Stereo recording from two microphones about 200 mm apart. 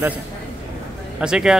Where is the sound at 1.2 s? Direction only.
5° right (ahead or behind).